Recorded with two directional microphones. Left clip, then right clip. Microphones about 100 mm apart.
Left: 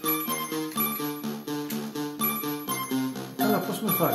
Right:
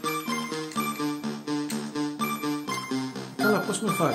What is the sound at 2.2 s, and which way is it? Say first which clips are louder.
Music: even; 15° left (ahead or behind).